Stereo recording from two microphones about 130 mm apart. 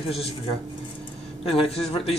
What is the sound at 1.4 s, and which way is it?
Speech, 45° left (ahead or behind).